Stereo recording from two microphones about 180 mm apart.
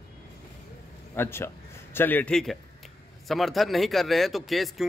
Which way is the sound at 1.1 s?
15° left (ahead or behind).